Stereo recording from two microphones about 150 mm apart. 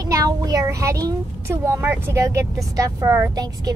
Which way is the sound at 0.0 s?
25° right (ahead or behind).